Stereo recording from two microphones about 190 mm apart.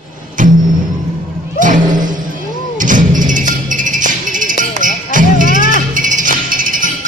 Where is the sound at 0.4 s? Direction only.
45° right (ahead or behind).